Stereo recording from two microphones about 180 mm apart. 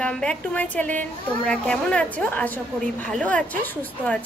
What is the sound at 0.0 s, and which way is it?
A woman's voice, 5° left (ahead or behind).